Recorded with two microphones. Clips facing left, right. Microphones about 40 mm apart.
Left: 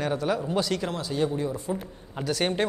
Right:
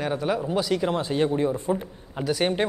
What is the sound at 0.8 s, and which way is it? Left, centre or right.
Speech, right.